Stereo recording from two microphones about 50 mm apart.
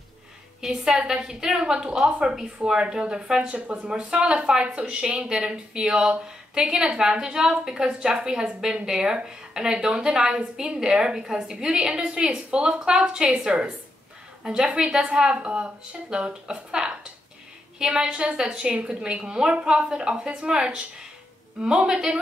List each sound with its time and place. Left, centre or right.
0.6 s a woman's voice: centre
14.4 s a woman's voice: centre